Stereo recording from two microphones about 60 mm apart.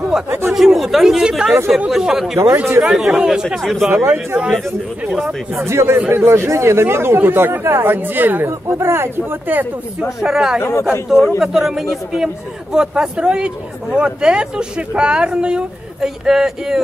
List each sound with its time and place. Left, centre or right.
0.1 s a man's voice: centre
2.3 s speech: right
2.8 s a man's voice: centre
4.0 s speech: right
5.6 s speech: right
5.9 s speech: right
6.2 s speech: right
8.7 s speech: right
10.2 s speech: centre
10.6 s speech: left
11.2 s a man's voice: centre